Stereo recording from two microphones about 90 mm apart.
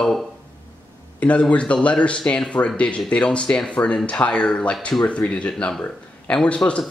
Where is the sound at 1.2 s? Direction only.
15° left (ahead or behind).